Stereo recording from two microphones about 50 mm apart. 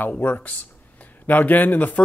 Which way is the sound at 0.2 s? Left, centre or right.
Left.